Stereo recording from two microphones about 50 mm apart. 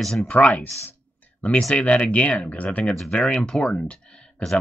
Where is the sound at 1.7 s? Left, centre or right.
Left.